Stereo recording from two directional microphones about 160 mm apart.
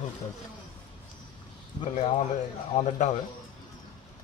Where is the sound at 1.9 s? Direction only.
50° left (ahead or behind).